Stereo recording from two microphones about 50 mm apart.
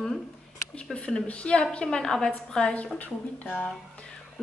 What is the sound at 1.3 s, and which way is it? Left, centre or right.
A woman's voice, left.